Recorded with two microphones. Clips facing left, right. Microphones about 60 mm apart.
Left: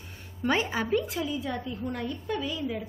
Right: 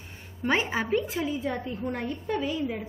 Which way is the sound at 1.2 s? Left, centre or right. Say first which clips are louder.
Right 2 dB; right.